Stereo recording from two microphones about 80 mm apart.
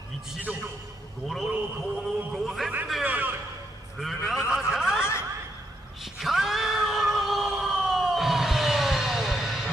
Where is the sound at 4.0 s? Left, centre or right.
Centre.